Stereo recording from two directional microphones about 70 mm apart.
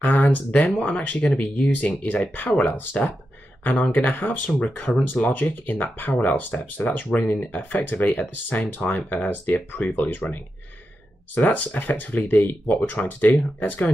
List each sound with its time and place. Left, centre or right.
0.0 s speech: left